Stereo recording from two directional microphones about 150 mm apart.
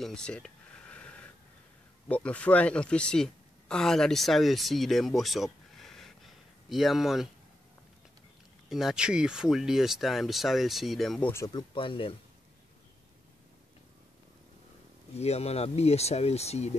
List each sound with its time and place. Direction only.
0.0 s a sound: 5° left (ahead or behind)
2.0 s speech: 10° left (ahead or behind)
8.6 s speech: centre (ahead or behind)
11.4 s speech: 30° left (ahead or behind)
15.1 s speech: 45° left (ahead or behind)